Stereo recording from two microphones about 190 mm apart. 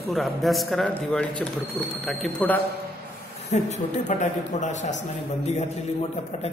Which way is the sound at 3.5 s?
35° left (ahead or behind).